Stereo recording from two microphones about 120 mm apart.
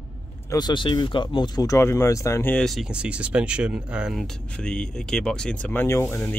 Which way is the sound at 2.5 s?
5° left (ahead or behind).